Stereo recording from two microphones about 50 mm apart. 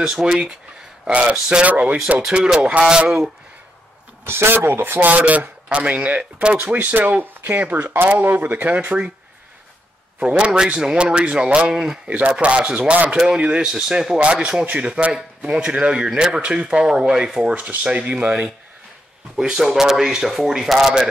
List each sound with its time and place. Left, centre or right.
0.0 s a man's voice: centre; by 2.0 s right
2.3 s a man's voice: centre
4.3 s speech: right
5.0 s speech: right
10.2 s a man's voice: right
13.4 s a man's voice: centre
19.3 s speech: centre
19.6 s a man's voice: centre